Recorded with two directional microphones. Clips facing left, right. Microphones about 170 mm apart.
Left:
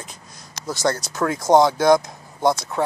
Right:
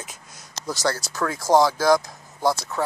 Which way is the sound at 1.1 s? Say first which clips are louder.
Left 3 dB; 20° left (ahead or behind).